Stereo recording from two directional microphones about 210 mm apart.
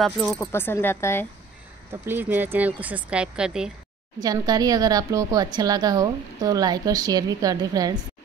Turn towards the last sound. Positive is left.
turn(degrees=-15)  # may be behind; listen again after turning